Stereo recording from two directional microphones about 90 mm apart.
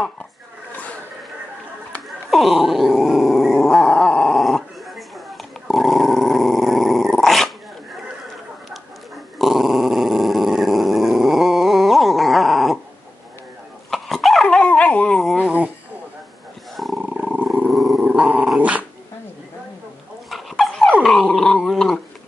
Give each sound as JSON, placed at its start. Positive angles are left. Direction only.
{"t": 2.3, "sound": "growling", "side_deg": 0}
{"t": 9.4, "sound": "growling", "side_deg": 0}
{"t": 13.8, "sound": "dog", "side_deg": 0}
{"t": 15.4, "sound": "a sound", "side_deg": -15}
{"t": 16.7, "sound": "roaring cats", "side_deg": 0}
{"t": 17.0, "sound": "wild animals", "side_deg": -10}
{"t": 17.6, "sound": "dog", "side_deg": 0}
{"t": 18.0, "sound": "dog", "side_deg": -15}
{"t": 20.2, "sound": "dog", "side_deg": 0}